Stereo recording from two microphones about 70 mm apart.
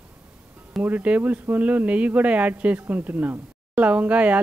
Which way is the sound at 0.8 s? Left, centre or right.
Right.